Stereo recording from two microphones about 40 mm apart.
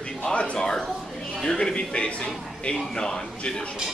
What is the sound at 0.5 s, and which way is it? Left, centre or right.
Speech, centre.